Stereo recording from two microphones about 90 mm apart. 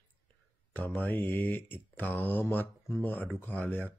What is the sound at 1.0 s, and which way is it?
Speech, 20° left (ahead or behind).